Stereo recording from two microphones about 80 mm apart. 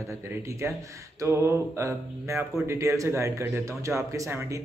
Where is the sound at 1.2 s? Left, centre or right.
Right.